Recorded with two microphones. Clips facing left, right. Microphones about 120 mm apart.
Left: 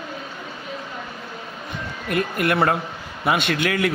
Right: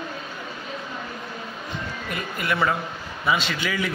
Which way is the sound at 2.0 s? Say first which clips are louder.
Left 7 dB; 60° left (ahead or behind).